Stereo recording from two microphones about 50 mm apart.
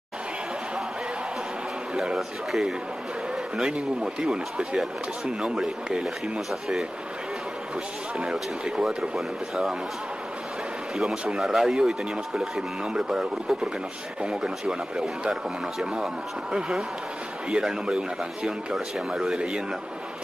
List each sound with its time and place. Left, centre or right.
2.1 s speech: centre
3.7 s speech: centre
8.3 s speech: centre
11.0 s speech: centre
17.5 s speech: centre